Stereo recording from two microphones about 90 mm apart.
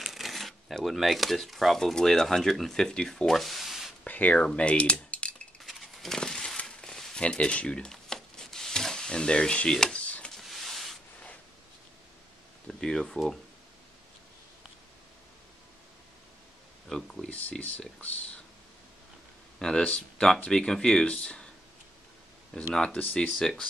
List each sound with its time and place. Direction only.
0.0 s speech: centre (ahead or behind)
4.0 s speech: 15° left (ahead or behind)
4.6 s typing: 15° left (ahead or behind)
5.6 s crumpling: centre (ahead or behind)
10.3 s a sound: centre (ahead or behind)
12.6 s speech: 5° left (ahead or behind)
16.9 s a sound: 5° left (ahead or behind)
17.3 s speech: 15° left (ahead or behind)
19.6 s speech: 10° left (ahead or behind)
23.2 s speech: 5° left (ahead or behind)